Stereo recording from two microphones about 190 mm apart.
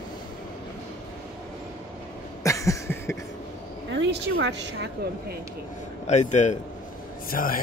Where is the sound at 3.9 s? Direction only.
65° right (ahead or behind).